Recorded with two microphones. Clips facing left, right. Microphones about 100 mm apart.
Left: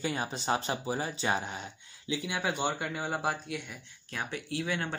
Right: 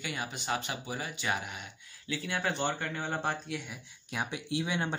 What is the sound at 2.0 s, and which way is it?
Speech, 15° left (ahead or behind).